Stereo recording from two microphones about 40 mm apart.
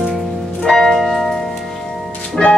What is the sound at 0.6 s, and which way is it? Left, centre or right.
Church bell, centre.